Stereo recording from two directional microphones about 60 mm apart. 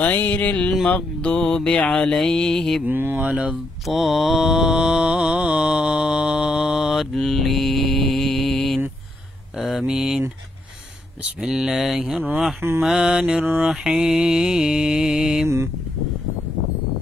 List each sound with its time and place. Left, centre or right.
0.0 s music: left; by 2.8 s centre
2.9 s speech: right
3.3 s speech: centre
3.8 s mantra: centre
11.4 s mantra: centre
12.2 s speech: right
12.8 s mantra: centre
15.4 s a sound: right